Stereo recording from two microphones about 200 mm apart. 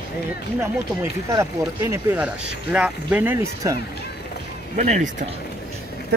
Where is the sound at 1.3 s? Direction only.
15° right (ahead or behind).